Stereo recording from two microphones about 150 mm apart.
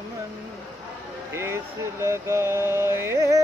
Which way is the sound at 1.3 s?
15° right (ahead or behind).